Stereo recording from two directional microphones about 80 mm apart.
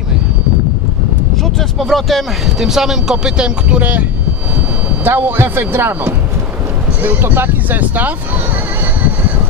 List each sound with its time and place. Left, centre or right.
1.4 s speech: centre
5.0 s speech: right